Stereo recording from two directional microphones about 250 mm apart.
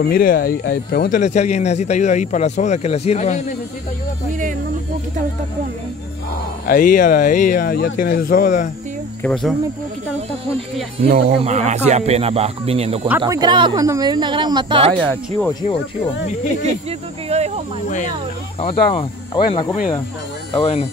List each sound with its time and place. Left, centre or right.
0.0 s speech: left
6.7 s speech: left
9.2 s speech: centre
11.0 s speech: right
17.3 s speech: right
17.8 s speech: left